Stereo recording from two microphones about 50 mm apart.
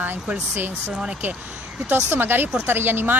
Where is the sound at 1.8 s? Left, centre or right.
Right.